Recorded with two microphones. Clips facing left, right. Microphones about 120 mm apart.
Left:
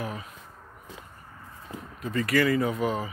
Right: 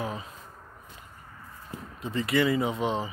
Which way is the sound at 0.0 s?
25° right (ahead or behind).